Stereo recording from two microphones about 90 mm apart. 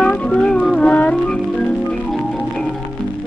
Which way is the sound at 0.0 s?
10° left (ahead or behind).